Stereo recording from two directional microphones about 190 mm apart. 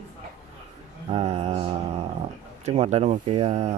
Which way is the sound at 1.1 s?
35° right (ahead or behind).